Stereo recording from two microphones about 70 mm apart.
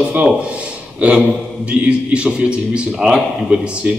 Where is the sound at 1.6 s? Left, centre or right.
Centre.